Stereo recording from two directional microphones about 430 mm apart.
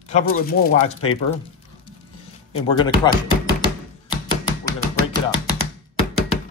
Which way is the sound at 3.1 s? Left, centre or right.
Centre.